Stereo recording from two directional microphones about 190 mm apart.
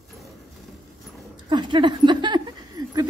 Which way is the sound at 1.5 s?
25° right (ahead or behind).